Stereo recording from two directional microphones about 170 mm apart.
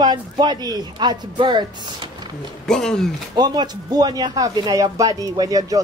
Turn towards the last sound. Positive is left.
turn(degrees=-20)  # may be behind; listen again after turning